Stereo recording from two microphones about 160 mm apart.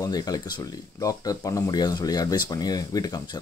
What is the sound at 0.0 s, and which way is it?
Speech, 25° left (ahead or behind).